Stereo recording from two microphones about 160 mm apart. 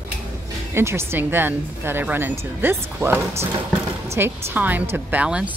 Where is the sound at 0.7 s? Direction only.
15° right (ahead or behind).